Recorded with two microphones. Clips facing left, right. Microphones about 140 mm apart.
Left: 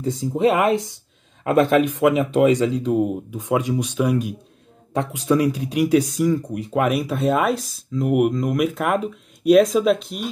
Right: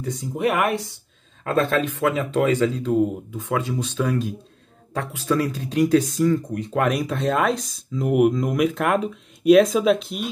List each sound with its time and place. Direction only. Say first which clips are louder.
0.0 s speech: left 5 dB; 25° left (ahead or behind); by 10.3 s centre (ahead or behind)